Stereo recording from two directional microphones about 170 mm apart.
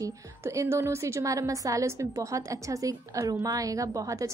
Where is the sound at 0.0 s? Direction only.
15° right (ahead or behind).